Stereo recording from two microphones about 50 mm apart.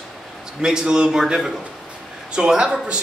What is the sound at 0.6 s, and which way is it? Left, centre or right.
A man's voice, centre.